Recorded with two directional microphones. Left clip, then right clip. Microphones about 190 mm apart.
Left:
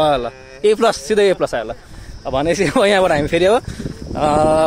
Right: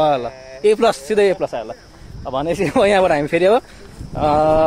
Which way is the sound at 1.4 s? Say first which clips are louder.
Left 3 dB; 25° left (ahead or behind).